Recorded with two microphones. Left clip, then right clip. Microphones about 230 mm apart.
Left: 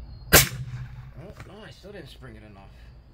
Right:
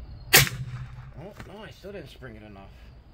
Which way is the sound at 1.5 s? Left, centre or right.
Centre.